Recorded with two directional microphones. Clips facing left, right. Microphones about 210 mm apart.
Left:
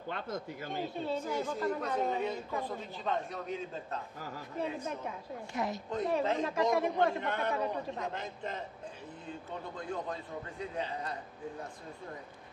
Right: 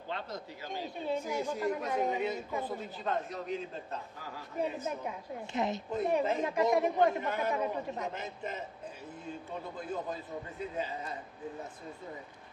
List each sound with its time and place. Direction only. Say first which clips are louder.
0.1 s speech: left 2 dB; 50° left (ahead or behind)
1.0 s a woman's voice: right 3 dB; 10° right (ahead or behind)
5.5 s speech: right 3 dB; 20° right (ahead or behind)
5.9 s a woman's voice: even; 5° right (ahead or behind)
9.8 s a woman's voice: even; 5° right (ahead or behind)